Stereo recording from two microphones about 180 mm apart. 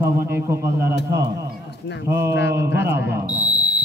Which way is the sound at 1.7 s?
70° left (ahead or behind).